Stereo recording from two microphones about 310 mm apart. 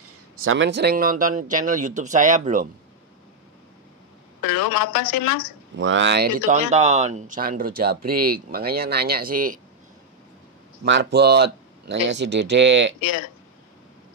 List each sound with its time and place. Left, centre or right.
0.4 s speech: right
4.9 s a woman's voice: left
5.8 s speech: right
10.8 s speech: right
13.0 s a woman's voice: left